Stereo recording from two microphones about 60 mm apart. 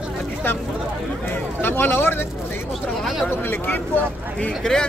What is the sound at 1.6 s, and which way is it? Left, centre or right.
Speech, left.